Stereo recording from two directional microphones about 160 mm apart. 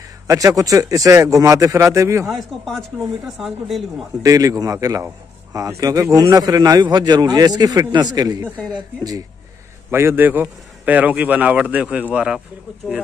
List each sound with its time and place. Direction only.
0.3 s a man's voice: 20° right (ahead or behind)
2.2 s speech: centre (ahead or behind)
4.2 s a man's voice: 20° right (ahead or behind)
9.8 s a man's voice: 15° right (ahead or behind)